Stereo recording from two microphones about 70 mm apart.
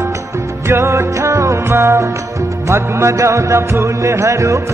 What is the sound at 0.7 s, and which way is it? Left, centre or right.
Music, right.